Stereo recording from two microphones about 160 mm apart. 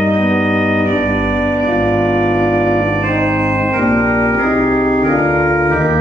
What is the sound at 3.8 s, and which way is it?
Organ, 20° left (ahead or behind).